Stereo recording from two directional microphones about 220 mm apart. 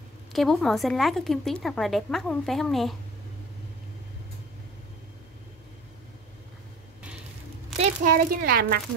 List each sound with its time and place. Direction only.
0.3 s a woman's voice: centre (ahead or behind)
7.8 s a child's voice: 40° right (ahead or behind)